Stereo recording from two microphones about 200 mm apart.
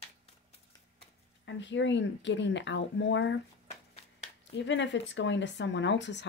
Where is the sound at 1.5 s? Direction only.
65° left (ahead or behind).